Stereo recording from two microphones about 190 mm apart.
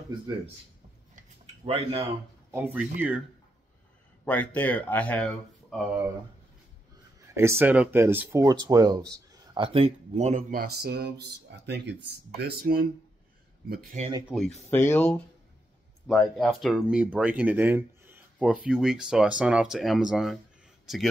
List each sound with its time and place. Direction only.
1.1 s a sound: 30° right (ahead or behind)
2.5 s speech: 10° right (ahead or behind)
4.2 s speech: 10° left (ahead or behind)
7.3 s speech: 15° right (ahead or behind); by 13.9 s 50° right (ahead or behind)
14.7 s speech: 10° left (ahead or behind)